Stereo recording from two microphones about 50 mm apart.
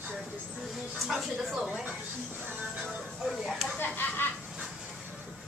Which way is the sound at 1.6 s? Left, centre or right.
Centre.